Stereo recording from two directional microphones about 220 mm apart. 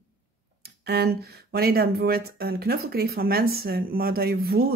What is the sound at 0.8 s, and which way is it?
Speech, 45° right (ahead or behind).